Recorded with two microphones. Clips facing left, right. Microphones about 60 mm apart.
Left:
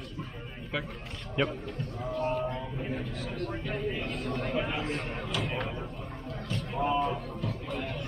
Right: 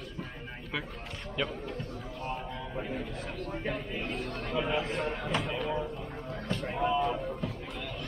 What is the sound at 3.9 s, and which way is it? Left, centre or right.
Speech, centre.